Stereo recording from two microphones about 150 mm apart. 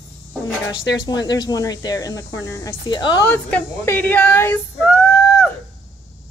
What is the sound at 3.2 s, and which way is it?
Speech, 10° left (ahead or behind).